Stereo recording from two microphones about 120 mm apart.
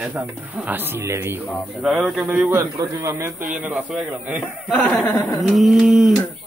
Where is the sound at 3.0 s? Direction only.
20° right (ahead or behind).